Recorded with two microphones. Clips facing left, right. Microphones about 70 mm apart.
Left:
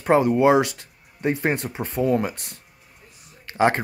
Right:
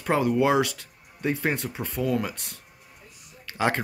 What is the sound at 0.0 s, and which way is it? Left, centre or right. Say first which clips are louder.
Speech: left 5 dB; left.